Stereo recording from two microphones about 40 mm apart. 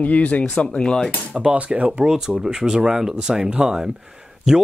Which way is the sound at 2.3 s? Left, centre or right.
Centre.